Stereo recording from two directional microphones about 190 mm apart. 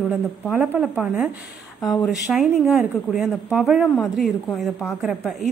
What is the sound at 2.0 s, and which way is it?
Speech, 5° right (ahead or behind).